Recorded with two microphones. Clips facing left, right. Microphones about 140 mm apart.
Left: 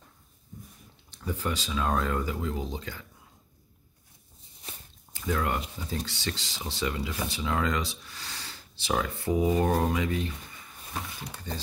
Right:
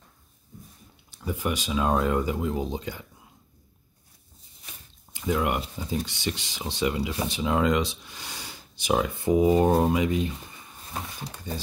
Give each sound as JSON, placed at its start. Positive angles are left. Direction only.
{"t": 1.1, "sound": "speech", "side_deg": -10}
{"t": 5.1, "sound": "speech", "side_deg": -20}